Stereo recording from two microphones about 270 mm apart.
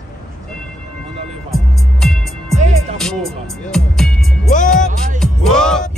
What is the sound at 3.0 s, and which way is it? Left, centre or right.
Music, centre.